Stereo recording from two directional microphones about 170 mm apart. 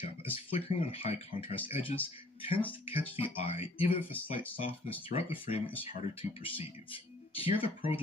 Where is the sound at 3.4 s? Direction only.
35° left (ahead or behind).